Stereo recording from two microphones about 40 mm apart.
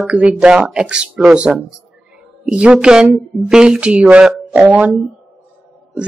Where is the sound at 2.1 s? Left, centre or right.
Centre.